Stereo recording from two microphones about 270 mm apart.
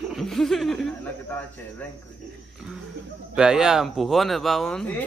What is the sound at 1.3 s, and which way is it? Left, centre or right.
Speech, centre.